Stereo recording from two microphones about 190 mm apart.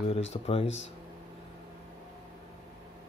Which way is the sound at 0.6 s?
75° left (ahead or behind).